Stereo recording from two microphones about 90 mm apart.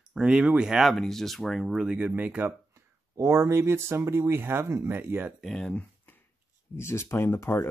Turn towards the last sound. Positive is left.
turn(degrees=25)  # may be behind; listen again after turning